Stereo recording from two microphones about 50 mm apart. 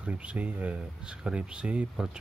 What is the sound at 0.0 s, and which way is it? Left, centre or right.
Speech, right.